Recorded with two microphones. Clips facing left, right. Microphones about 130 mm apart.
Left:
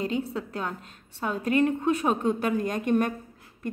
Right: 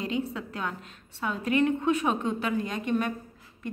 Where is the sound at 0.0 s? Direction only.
35° left (ahead or behind).